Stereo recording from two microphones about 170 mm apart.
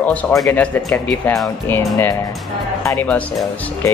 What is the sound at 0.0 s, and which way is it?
Speech, 10° left (ahead or behind).